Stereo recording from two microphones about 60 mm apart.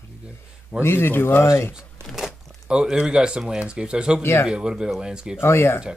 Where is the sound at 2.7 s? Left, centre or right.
Centre.